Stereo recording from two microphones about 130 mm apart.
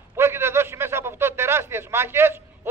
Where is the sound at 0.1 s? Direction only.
20° right (ahead or behind).